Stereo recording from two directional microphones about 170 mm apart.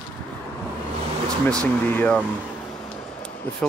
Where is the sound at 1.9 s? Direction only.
10° left (ahead or behind).